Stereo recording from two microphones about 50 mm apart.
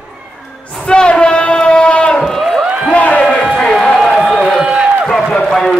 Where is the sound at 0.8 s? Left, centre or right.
Centre.